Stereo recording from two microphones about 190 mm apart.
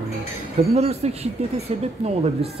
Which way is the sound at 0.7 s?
35° right (ahead or behind).